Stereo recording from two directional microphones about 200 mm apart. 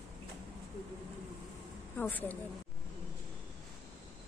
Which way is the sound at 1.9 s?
10° left (ahead or behind).